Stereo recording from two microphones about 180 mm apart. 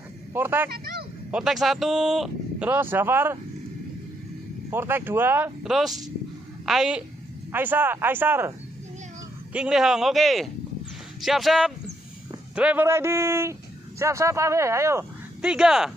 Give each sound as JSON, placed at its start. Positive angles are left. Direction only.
{"t": 0.3, "sound": "speech", "side_deg": -10}
{"t": 0.7, "sound": "speech", "side_deg": -55}
{"t": 1.3, "sound": "speech", "side_deg": 0}
{"t": 4.6, "sound": "a man's voice", "side_deg": -10}
{"t": 15.4, "sound": "speech", "side_deg": -5}